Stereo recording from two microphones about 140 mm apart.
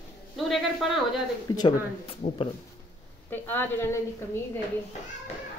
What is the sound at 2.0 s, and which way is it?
Speech, 45° left (ahead or behind).